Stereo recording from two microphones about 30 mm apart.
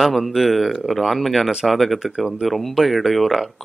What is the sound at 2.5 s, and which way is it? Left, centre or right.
Speech, centre.